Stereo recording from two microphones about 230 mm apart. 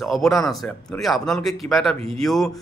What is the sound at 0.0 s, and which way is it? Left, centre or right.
A man's voice, centre.